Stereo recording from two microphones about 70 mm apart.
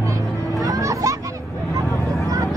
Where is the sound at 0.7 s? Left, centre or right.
Right.